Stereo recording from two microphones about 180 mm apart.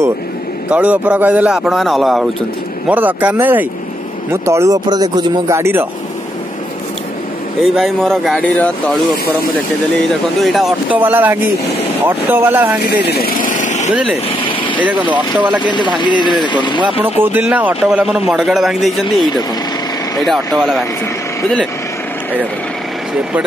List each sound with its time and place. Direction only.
0.7 s a man's voice: 5° right (ahead or behind)
7.6 s a man's voice: centre (ahead or behind)
10.4 s a man's voice: centre (ahead or behind)
11.0 s speech: 10° right (ahead or behind)
13.0 s vehicle: 60° left (ahead or behind); by 13.9 s 40° left (ahead or behind)
15.0 s speech: 10° right (ahead or behind)
15.6 s speech: 25° left (ahead or behind)
17.2 s a man's voice: 10° right (ahead or behind)
20.2 s a man's voice: centre (ahead or behind)